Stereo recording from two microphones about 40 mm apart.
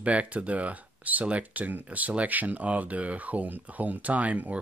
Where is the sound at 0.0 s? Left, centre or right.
Right.